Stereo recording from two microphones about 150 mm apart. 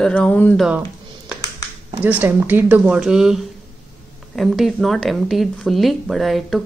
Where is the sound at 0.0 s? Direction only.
5° left (ahead or behind).